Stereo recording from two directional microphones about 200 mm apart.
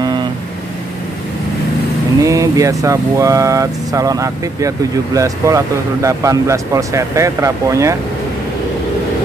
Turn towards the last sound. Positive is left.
turn(degrees=-15)  # may be behind; listen again after turning